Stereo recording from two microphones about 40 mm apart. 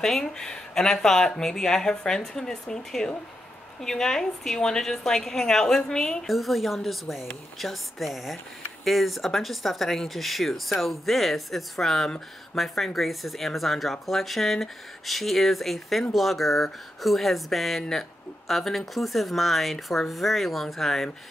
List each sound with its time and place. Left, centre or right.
0.0 s speech: centre
6.2 s speech: centre